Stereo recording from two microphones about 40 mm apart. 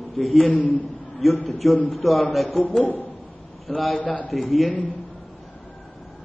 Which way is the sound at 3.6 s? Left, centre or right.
Centre.